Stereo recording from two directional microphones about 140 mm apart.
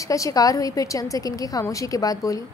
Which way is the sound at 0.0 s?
25° left (ahead or behind).